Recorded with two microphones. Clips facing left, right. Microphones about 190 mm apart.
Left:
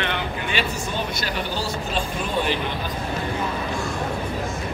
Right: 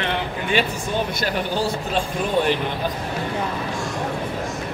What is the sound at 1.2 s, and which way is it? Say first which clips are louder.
Speech: right 4 dB; 55° right (ahead or behind).